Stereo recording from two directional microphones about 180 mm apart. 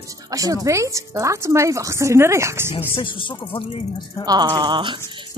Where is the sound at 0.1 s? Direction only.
20° right (ahead or behind).